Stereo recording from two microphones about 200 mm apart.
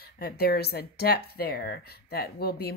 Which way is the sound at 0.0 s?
50° left (ahead or behind).